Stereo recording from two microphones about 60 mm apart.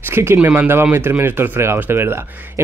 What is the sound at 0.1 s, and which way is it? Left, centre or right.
Speech, right.